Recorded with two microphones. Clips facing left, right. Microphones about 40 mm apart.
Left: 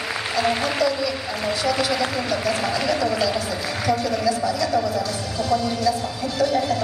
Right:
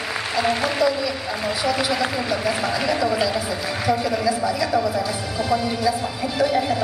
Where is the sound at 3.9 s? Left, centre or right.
Centre.